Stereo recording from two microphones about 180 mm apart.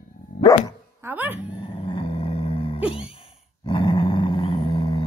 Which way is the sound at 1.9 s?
30° left (ahead or behind).